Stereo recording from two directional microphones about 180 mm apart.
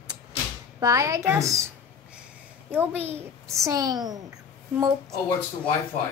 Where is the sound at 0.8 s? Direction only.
20° right (ahead or behind).